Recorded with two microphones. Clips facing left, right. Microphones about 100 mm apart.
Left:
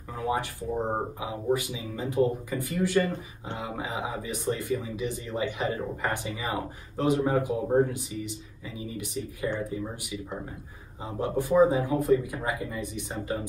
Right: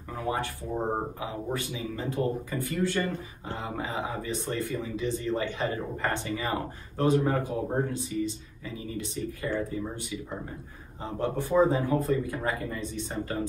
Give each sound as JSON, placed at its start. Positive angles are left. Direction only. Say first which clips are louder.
{"t": 0.2, "sound": "speech", "louder": "left 2 dB", "side_deg": 20}